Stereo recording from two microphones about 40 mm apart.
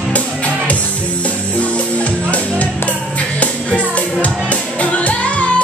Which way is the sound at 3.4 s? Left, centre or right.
Left.